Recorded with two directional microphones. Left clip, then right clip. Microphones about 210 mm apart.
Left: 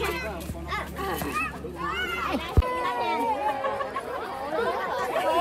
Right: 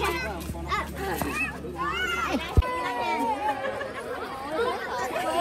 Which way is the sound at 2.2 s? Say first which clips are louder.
Right 1 dB; 45° left (ahead or behind).